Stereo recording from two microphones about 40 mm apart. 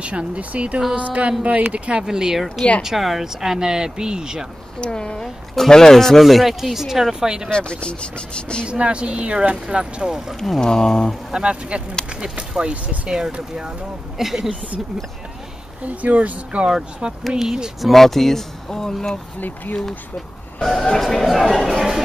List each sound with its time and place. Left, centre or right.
0.0 s speech: right
2.0 s speech: centre
4.7 s speech: left
5.2 s speech: centre
6.2 s speech: centre
7.4 s speech: left
8.6 s speech: right
10.6 s speech: centre
11.3 s speech: right; by 14.5 s centre
15.9 s speech: right
16.6 s speech: centre
17.8 s speech: centre
20.6 s speech: centre